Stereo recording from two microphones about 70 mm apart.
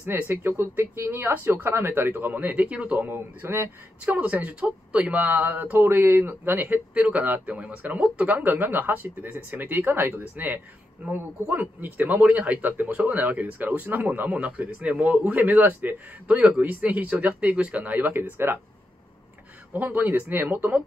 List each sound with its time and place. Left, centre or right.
0.3 s speech: right
19.7 s speech: right